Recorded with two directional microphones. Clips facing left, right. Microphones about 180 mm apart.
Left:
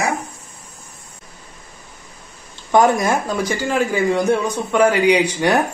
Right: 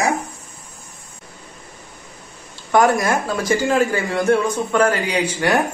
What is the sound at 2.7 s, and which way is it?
A man's voice, 20° left (ahead or behind).